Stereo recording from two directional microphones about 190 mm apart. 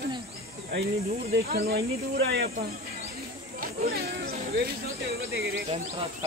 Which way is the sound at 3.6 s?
55° right (ahead or behind).